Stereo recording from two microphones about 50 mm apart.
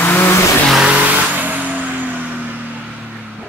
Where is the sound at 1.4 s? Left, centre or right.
Right.